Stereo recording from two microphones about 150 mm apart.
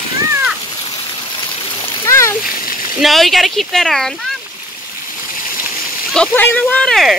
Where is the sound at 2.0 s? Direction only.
20° left (ahead or behind).